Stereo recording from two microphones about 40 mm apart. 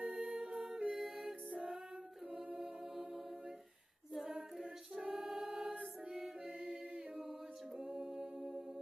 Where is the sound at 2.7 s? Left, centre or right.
Centre.